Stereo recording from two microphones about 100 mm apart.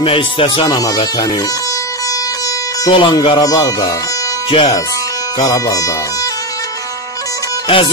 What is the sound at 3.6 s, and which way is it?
Speech, 40° left (ahead or behind).